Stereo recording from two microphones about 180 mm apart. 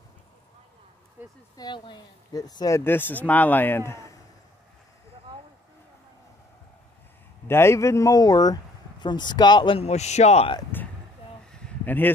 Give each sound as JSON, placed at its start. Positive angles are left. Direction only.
{"t": 1.2, "sound": "speech", "side_deg": -10}
{"t": 1.6, "sound": "speech", "side_deg": 25}
{"t": 7.4, "sound": "speech", "side_deg": 15}
{"t": 11.5, "sound": "a sound", "side_deg": 5}